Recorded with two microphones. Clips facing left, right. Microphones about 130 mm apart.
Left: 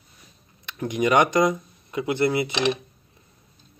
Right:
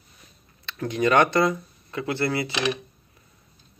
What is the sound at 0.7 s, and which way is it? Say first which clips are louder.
Speech: even; 15° left (ahead or behind).